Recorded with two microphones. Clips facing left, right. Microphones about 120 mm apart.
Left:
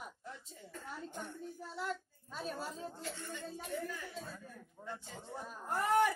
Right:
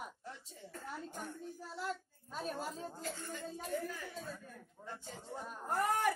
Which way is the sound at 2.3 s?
40° right (ahead or behind).